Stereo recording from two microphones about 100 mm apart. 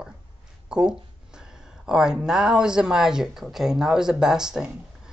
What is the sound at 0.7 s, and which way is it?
Speech, 5° right (ahead or behind).